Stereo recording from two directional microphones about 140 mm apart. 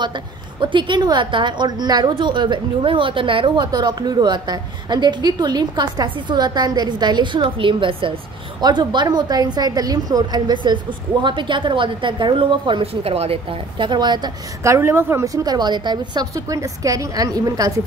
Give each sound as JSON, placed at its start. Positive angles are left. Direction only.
{"t": 0.0, "sound": "a woman's voice", "side_deg": -35}
{"t": 14.6, "sound": "a woman's voice", "side_deg": -20}